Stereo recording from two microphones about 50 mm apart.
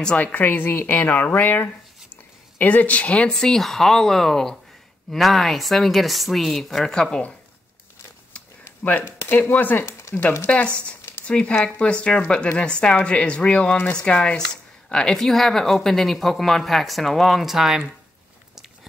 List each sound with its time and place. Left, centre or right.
0.2 s a woman's voice: left
3.3 s a woman's voice: centre
9.3 s a woman's voice: left
10.5 s speech: left
15.1 s a woman's voice: centre